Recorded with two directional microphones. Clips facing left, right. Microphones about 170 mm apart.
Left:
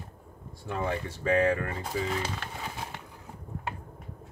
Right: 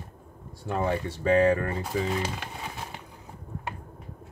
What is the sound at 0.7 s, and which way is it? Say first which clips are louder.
Speech: right 4 dB; 35° right (ahead or behind).